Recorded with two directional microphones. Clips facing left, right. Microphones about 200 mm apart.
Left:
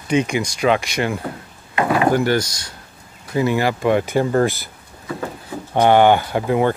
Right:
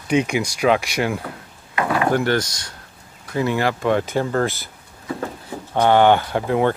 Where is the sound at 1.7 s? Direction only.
20° left (ahead or behind).